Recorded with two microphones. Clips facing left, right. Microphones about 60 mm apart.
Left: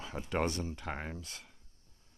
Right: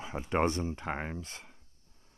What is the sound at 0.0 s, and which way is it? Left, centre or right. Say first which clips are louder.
Speech: right 4 dB; right.